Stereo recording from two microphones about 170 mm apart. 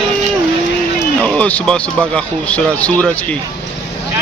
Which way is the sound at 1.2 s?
10° left (ahead or behind).